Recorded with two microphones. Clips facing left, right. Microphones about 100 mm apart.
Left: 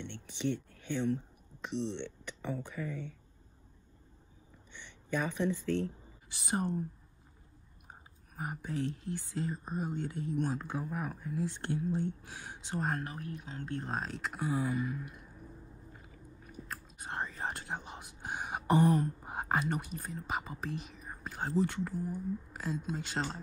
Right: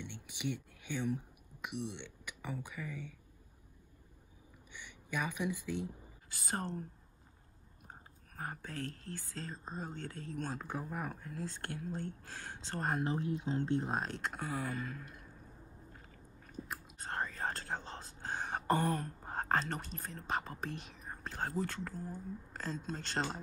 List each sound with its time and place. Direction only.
0.0 s speech: 10° right (ahead or behind)
4.7 s speech: 10° right (ahead or behind)
6.3 s speech: 20° left (ahead or behind)
7.9 s speech: 15° left (ahead or behind)
10.8 s speech: 5° left (ahead or behind)
13.0 s speech: 25° right (ahead or behind)
13.8 s speech: centre (ahead or behind)
14.4 s speech: 15° left (ahead or behind)
16.6 s chewing: 5° right (ahead or behind)
17.0 s whispering: 15° left (ahead or behind)
21.4 s speech: 20° left (ahead or behind); by 23.4 s centre (ahead or behind)